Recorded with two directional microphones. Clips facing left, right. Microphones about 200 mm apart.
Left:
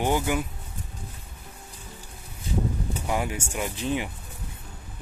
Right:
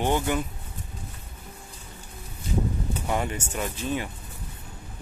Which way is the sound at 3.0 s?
10° left (ahead or behind).